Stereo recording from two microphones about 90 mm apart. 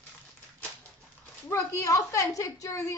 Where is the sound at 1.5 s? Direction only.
35° left (ahead or behind).